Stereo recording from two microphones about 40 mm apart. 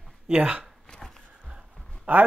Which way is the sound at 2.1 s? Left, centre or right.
Right.